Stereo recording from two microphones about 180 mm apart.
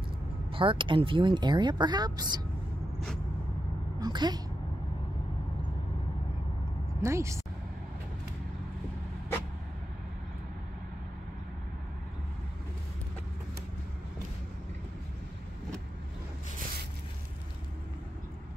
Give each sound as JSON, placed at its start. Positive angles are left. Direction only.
{"t": 0.5, "sound": "speech", "side_deg": -30}
{"t": 4.0, "sound": "speech", "side_deg": -25}
{"t": 7.0, "sound": "speech", "side_deg": -15}